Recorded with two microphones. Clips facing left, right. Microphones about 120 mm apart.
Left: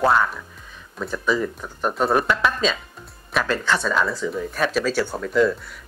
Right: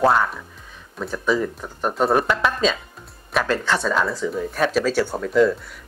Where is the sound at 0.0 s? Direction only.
30° right (ahead or behind).